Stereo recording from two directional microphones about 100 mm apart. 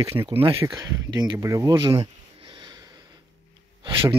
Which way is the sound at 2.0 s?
50° right (ahead or behind).